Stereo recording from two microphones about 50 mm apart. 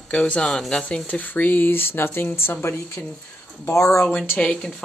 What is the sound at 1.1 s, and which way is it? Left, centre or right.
Speech, left.